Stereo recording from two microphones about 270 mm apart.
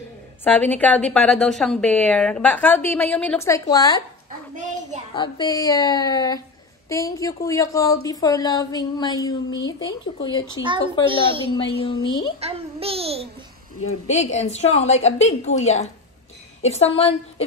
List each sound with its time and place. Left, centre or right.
0.4 s a woman's voice: centre
5.1 s a woman's voice: centre
11.1 s a child's voice: centre
11.5 s a woman's voice: centre
12.4 s a child's voice: right
13.8 s a woman's voice: left